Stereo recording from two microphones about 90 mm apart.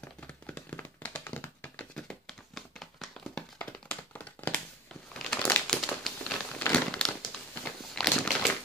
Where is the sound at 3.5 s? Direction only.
20° left (ahead or behind).